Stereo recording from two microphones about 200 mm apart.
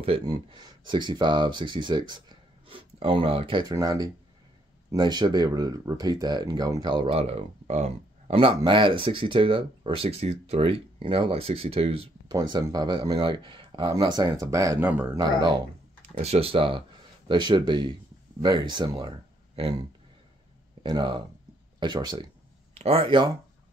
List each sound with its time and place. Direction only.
0.0 s speech: 25° right (ahead or behind); by 15.0 s 10° right (ahead or behind)
15.1 s speech: 20° right (ahead or behind)